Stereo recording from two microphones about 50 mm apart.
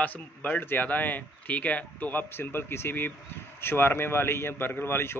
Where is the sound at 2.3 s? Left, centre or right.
Left.